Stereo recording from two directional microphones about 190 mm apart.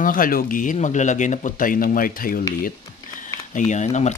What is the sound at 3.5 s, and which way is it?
Speech, 40° left (ahead or behind).